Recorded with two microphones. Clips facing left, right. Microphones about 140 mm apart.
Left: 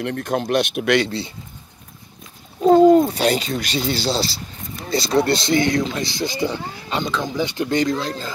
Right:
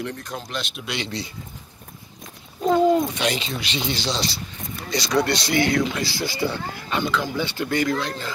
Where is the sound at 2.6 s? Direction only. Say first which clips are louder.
Left 7 dB; 40° left (ahead or behind).